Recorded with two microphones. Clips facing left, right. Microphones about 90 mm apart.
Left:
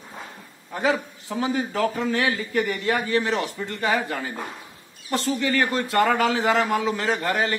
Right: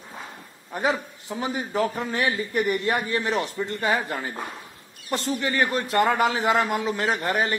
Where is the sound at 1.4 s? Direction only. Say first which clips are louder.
Left 2 dB; 20° right (ahead or behind).